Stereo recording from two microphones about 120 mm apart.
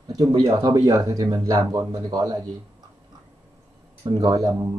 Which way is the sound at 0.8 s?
30° right (ahead or behind).